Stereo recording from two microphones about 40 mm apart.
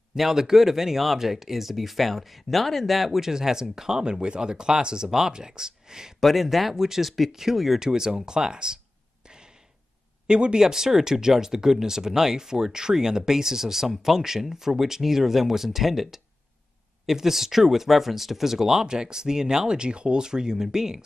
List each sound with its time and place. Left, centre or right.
0.1 s speech: centre
6.2 s speech: centre
7.8 s speech: centre
10.2 s speech: right